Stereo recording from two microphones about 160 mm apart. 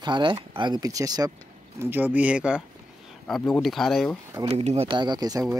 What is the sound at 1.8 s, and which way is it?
Speech, 10° right (ahead or behind).